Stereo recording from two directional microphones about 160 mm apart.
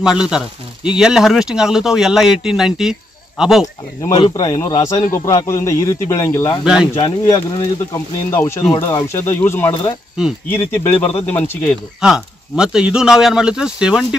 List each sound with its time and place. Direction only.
0.0 s speech: 5° right (ahead or behind)
4.0 s speech: 30° left (ahead or behind)
6.6 s speech: 5° right (ahead or behind)
7.0 s speech: 30° left (ahead or behind)
7.9 s speech: 15° left (ahead or behind)
12.0 s speech: 5° right (ahead or behind)